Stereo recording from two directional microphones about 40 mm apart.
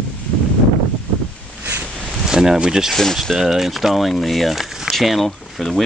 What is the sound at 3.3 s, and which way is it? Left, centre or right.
Speech, centre.